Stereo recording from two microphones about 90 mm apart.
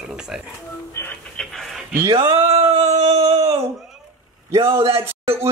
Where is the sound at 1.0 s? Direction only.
30° left (ahead or behind).